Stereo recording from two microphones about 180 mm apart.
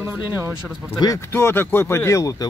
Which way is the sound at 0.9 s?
20° left (ahead or behind).